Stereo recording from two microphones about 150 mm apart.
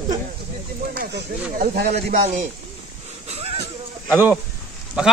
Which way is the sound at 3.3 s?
45° right (ahead or behind).